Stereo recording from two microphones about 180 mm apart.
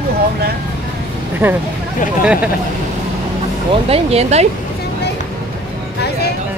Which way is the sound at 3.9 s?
35° right (ahead or behind).